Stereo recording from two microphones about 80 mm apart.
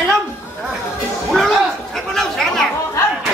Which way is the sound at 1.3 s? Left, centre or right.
Centre.